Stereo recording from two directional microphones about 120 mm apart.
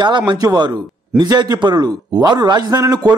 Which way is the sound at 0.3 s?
35° right (ahead or behind).